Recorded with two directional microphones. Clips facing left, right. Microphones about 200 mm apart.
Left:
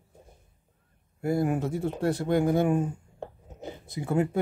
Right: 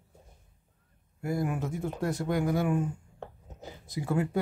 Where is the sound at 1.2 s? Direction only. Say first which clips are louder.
Left 5 dB; 30° left (ahead or behind).